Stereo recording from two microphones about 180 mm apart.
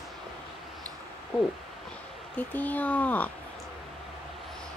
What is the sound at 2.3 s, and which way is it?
Speech, 10° left (ahead or behind).